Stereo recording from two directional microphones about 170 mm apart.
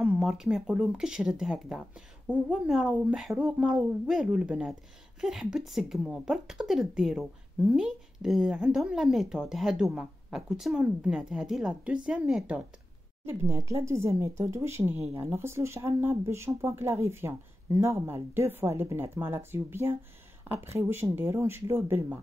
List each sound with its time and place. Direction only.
0.0 s speech: 5° right (ahead or behind)